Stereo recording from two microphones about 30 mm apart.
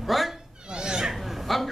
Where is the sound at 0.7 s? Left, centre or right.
Right.